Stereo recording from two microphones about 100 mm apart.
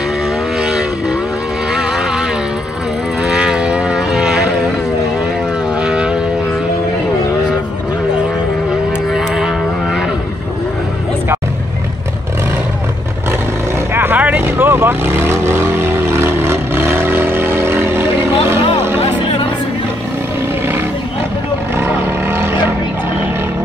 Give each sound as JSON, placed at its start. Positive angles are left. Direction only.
{"t": 0.6, "sound": "vehicle", "side_deg": -5}
{"t": 1.7, "sound": "a sound", "side_deg": -5}
{"t": 3.3, "sound": "vehicle", "side_deg": -10}
{"t": 5.8, "sound": "vehicle", "side_deg": -10}
{"t": 9.1, "sound": "vehicle", "side_deg": -5}
{"t": 13.9, "sound": "vehicle", "side_deg": -20}
{"t": 18.9, "sound": "music", "side_deg": 70}
{"t": 21.7, "sound": "roaring cats", "side_deg": -25}